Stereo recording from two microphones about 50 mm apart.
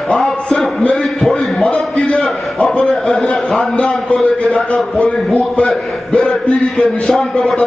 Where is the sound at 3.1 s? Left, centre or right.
Centre.